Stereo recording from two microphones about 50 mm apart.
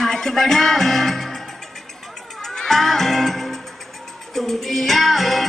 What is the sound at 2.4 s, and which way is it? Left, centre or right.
Music, centre.